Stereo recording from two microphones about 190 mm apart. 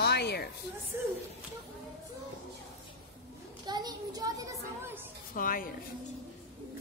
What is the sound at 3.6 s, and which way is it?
A child's voice, 20° right (ahead or behind).